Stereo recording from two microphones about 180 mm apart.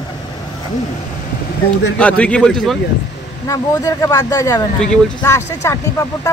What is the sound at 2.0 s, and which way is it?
Speech, 5° left (ahead or behind).